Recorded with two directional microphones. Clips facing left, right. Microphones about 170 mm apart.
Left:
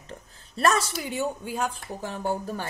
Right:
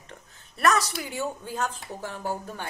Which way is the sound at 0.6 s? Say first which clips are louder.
Even; 25° left (ahead or behind).